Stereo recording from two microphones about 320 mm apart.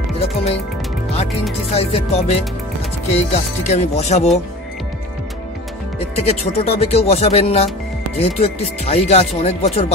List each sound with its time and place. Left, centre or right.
0.2 s music: centre
1.7 s speech: centre
5.9 s speech: centre